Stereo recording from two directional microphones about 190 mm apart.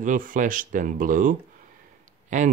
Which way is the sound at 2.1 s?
40° right (ahead or behind).